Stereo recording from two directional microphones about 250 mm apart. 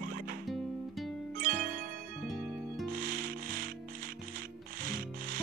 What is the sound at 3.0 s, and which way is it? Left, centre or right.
Rub, right.